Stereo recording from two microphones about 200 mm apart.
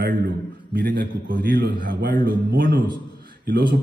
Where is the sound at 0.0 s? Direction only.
55° right (ahead or behind).